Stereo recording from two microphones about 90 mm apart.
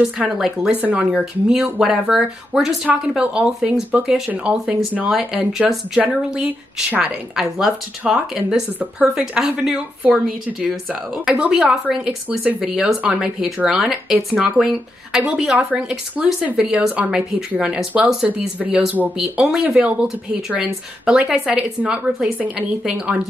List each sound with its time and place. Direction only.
0.2 s a woman's voice: 5° right (ahead or behind)
0.7 s speech: 20° right (ahead or behind)
1.1 s speech: 5° right (ahead or behind)
5.1 s a woman's voice: 5° right (ahead or behind)
5.9 s a woman's voice: 15° right (ahead or behind)